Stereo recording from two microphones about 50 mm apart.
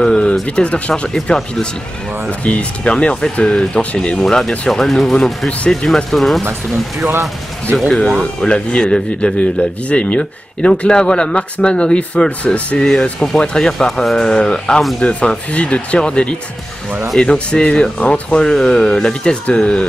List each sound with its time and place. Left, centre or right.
0.0 s speech: centre
8.4 s speech: centre
18.0 s speech: left
18.4 s speech: centre